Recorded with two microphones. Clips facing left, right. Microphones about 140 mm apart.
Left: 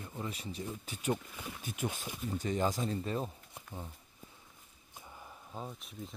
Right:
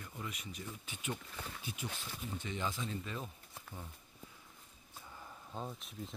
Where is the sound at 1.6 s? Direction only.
50° left (ahead or behind).